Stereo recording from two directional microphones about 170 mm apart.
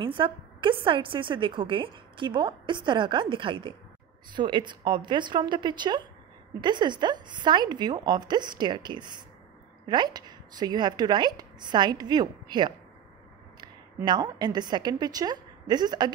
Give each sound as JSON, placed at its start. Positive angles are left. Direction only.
{"t": 0.0, "sound": "a woman's voice", "side_deg": -30}
{"t": 14.0, "sound": "a woman's voice", "side_deg": -25}